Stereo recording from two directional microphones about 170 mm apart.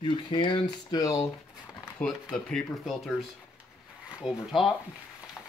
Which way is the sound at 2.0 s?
5° left (ahead or behind).